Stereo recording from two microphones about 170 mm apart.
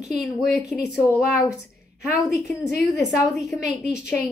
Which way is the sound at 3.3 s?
Centre (ahead or behind).